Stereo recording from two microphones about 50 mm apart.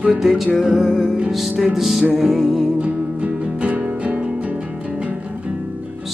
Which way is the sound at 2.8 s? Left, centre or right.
Right.